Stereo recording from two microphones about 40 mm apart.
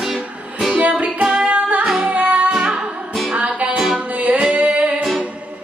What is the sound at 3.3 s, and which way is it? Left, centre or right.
Music, right.